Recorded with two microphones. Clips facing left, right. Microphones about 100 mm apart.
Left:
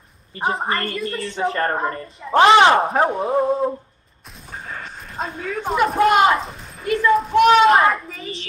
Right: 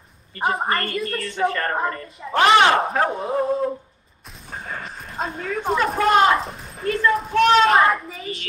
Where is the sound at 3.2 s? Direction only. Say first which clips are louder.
Left 3 dB; 30° left (ahead or behind).